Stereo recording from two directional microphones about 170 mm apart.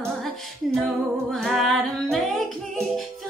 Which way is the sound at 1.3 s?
Centre (ahead or behind).